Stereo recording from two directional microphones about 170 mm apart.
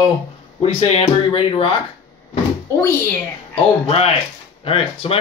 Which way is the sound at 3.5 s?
35° left (ahead or behind).